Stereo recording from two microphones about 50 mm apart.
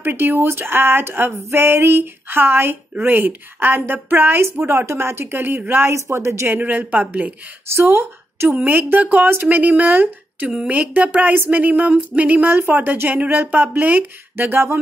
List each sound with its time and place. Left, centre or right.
0.0 s speech: right
4.4 s speech: right
5.3 s speech: right
5.9 s speech: right
6.4 s speech: right
7.7 s a woman's voice: right
8.6 s speech: right
12.5 s speech: right